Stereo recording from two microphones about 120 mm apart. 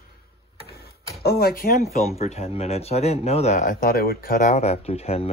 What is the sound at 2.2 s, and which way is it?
Speech, 60° left (ahead or behind).